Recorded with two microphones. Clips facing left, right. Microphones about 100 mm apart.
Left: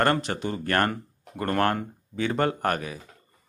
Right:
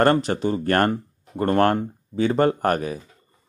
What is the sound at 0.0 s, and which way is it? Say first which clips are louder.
A man's voice: right 6 dB; 35° right (ahead or behind).